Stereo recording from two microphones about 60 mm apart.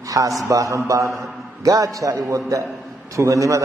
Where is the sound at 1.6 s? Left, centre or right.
Right.